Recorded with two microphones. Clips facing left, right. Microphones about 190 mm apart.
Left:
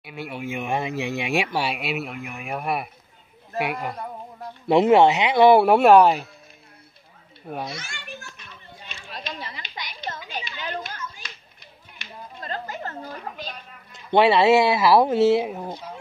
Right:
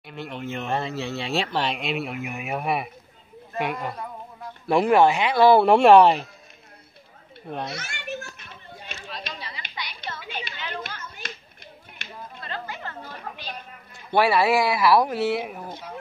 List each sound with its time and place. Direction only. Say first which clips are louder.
0.0 s speech: left 1 dB; 10° left (ahead or behind)
4.6 s speech: left 2 dB; 20° left (ahead or behind)
5.7 s speech: even; 5° left (ahead or behind)
7.4 s speech: even; 10° left (ahead or behind)
7.7 s children playing: right 4 dB; 55° right (ahead or behind)
9.1 s a sound: left 3 dB; 45° left (ahead or behind)
11.1 s a sound: right 5 dB; 50° right (ahead or behind)
12.4 s a sound: left 4 dB; 40° left (ahead or behind)
13.9 s speech: left 3 dB; 20° left (ahead or behind)